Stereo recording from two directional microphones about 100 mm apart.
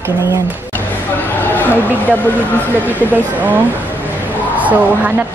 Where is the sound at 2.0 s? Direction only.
15° left (ahead or behind).